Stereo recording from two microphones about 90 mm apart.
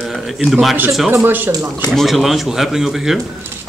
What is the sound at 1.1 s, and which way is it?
Speech, 25° right (ahead or behind).